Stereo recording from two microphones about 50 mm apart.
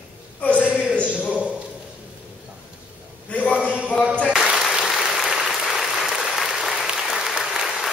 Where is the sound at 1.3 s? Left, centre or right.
Right.